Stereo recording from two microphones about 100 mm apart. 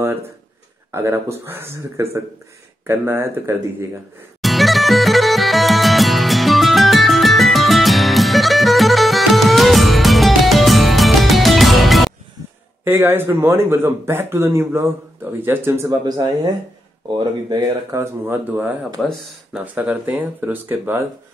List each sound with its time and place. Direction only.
0.9 s speech: 30° right (ahead or behind)
4.4 s music: centre (ahead or behind)
12.8 s speech: 20° right (ahead or behind)
17.2 s speech: 50° right (ahead or behind)
17.9 s speech: 20° right (ahead or behind)
19.0 s speech: 5° left (ahead or behind)
19.5 s speech: 10° right (ahead or behind)